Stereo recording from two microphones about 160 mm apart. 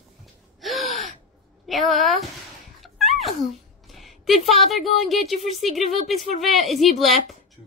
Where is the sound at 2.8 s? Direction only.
Centre (ahead or behind).